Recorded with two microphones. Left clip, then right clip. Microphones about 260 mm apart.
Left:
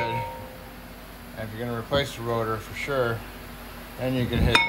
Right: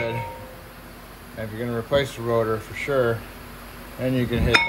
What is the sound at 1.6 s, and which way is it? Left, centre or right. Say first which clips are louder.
A man's voice: right 4 dB; centre.